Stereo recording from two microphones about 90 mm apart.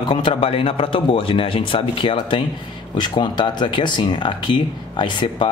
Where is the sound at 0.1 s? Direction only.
70° left (ahead or behind).